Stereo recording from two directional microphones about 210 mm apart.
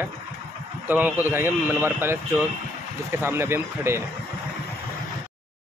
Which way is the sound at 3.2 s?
10° right (ahead or behind).